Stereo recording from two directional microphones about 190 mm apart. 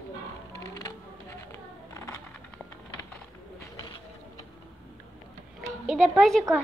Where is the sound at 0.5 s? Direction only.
20° left (ahead or behind).